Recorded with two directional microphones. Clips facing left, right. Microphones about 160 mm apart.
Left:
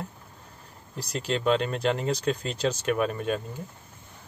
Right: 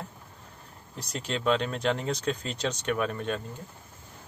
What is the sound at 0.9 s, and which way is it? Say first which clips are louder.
Speech: left 4 dB; centre (ahead or behind).